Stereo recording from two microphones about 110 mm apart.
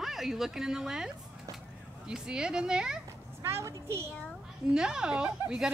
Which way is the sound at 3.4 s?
25° right (ahead or behind).